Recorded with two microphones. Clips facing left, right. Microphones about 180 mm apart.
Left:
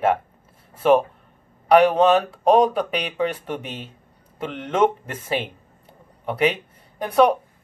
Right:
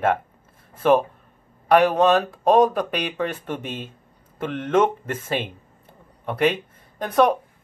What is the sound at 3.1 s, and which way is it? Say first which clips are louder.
Speech: left 2 dB; 10° left (ahead or behind).